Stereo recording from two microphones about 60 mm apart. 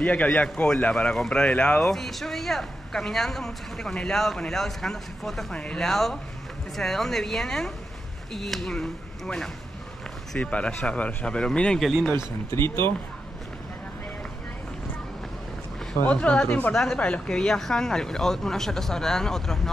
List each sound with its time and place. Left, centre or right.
0.0 s speech: left
1.8 s speech: centre
5.5 s speech: centre
5.9 s speech: centre
10.4 s speech: left
12.5 s speech: left
16.1 s speech: centre
16.4 s speech: left
16.7 s speech: centre